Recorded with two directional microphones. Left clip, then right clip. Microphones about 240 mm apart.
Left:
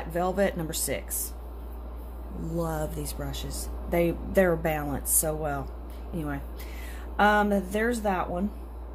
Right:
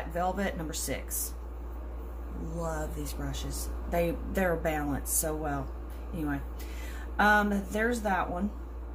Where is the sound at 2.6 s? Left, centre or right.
Left.